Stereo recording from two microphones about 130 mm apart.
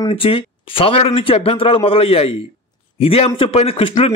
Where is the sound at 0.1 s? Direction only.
45° left (ahead or behind).